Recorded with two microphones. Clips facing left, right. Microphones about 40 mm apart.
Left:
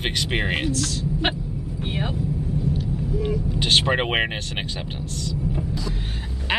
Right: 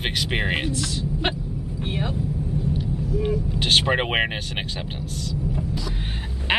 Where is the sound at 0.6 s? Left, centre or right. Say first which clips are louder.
Left 2 dB; centre.